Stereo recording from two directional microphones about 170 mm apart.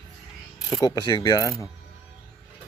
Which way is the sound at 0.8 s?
25° left (ahead or behind).